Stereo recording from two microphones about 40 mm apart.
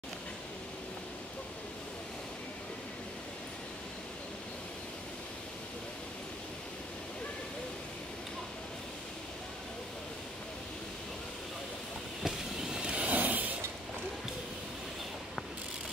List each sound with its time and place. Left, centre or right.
12.2 s vehicle: centre
12.8 s vehicle: right
13.1 s mechanisms: right